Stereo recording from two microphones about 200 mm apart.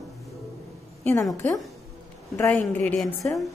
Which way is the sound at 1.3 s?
10° left (ahead or behind).